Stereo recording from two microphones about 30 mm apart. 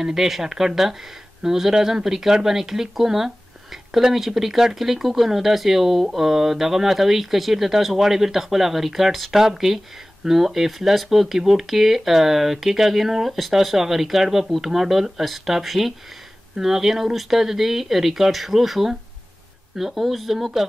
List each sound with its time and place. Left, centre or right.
0.0 s speech: centre
20.0 s speech: centre